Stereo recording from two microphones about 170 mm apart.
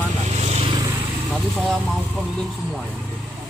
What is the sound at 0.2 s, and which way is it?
Vehicle, 40° right (ahead or behind).